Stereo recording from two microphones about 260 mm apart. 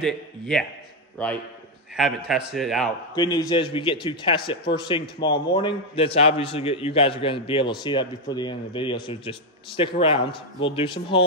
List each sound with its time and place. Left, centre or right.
0.0 s a man's voice: centre
3.2 s a man's voice: centre